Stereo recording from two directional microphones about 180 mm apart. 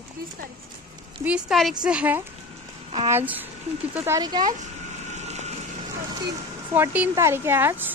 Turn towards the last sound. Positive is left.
turn(degrees=-10)  # may be behind; listen again after turning